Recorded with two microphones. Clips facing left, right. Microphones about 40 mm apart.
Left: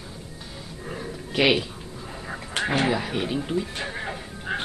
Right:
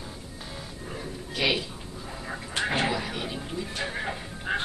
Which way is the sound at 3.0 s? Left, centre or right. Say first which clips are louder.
Left 5 dB; centre.